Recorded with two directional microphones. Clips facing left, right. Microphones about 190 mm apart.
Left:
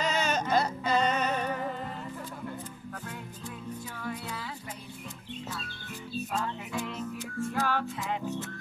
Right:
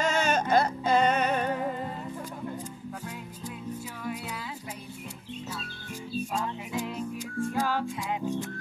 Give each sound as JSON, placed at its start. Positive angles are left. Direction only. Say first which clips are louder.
{"t": 0.0, "sound": "music", "louder": "right 3 dB", "side_deg": -50}
{"t": 4.0, "sound": "music", "louder": "right 1 dB", "side_deg": -10}
{"t": 6.1, "sound": "music", "louder": "right 1 dB", "side_deg": -10}